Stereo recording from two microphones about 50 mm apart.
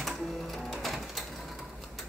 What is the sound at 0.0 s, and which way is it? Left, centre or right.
Music, centre.